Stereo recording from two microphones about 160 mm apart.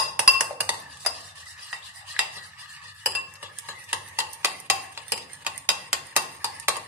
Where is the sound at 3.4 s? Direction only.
15° right (ahead or behind).